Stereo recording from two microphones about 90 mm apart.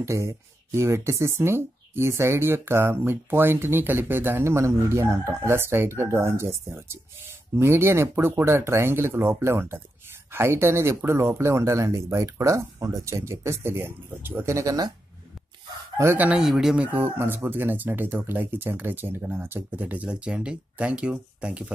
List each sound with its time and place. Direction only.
0.0 s speech: 35° right (ahead or behind)
16.3 s speech: 5° right (ahead or behind)